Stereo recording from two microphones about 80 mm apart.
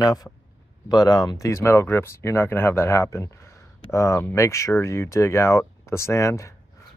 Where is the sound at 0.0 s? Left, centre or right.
Left.